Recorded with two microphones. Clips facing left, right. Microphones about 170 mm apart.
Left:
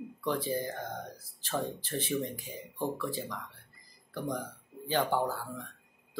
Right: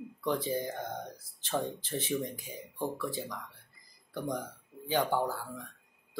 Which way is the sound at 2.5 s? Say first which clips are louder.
Left 1 dB; 15° left (ahead or behind).